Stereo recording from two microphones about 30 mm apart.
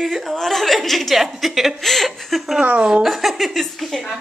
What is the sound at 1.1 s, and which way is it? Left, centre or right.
Speech, centre.